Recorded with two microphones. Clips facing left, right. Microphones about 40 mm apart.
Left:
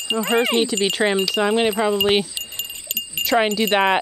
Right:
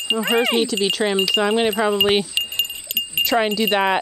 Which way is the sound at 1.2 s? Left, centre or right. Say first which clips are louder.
Right 1 dB; centre.